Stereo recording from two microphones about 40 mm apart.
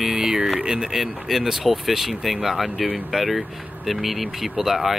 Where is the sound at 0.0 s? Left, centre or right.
Centre.